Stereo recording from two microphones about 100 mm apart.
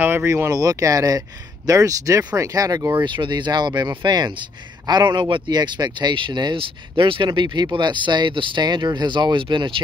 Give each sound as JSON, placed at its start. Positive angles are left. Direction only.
{"t": 0.0, "sound": "speech", "side_deg": -25}